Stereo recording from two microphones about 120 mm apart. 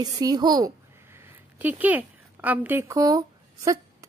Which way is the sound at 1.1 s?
15° right (ahead or behind).